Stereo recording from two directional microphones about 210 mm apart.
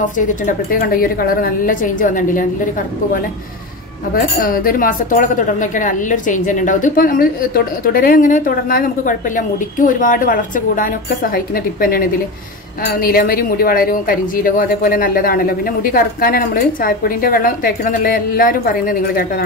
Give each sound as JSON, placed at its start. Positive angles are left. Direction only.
{"t": 0.0, "sound": "speech", "side_deg": 40}
{"t": 4.1, "sound": "speech", "side_deg": 45}
{"t": 13.0, "sound": "speech", "side_deg": 45}